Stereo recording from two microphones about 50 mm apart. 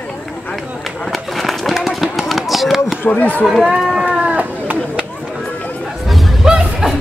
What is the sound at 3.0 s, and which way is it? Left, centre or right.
Speech, left.